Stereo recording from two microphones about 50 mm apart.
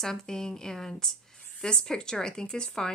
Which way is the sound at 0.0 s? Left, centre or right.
Centre.